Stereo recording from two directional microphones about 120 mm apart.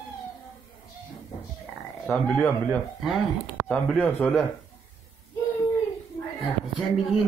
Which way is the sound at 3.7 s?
10° left (ahead or behind).